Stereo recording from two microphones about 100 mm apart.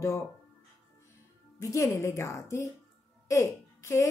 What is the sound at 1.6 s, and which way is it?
A woman's voice, 35° left (ahead or behind).